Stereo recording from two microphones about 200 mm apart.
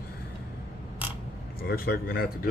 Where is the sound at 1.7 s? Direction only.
50° left (ahead or behind).